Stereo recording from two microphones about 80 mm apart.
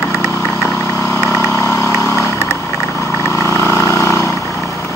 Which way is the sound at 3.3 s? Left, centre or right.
Left.